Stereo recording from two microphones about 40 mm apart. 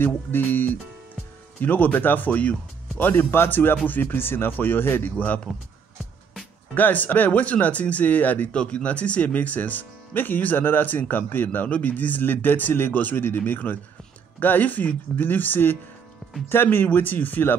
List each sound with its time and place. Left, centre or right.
0.0 s speech: left
3.0 s speech: left
3.8 s speech: left
5.1 s speech: left
6.7 s speech: left
8.5 s speech: left
11.6 s speech: left